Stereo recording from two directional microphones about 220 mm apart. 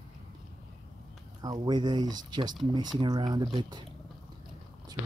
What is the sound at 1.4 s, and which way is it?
Speech, 20° right (ahead or behind).